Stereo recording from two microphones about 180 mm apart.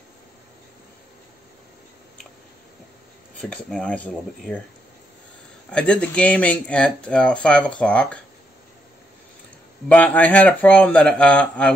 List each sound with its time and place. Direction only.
3.3 s speech: 5° left (ahead or behind)
5.7 s speech: 5° left (ahead or behind)
9.8 s speech: 10° left (ahead or behind)